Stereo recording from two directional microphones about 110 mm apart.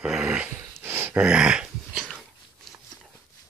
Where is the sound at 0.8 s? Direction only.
20° right (ahead or behind).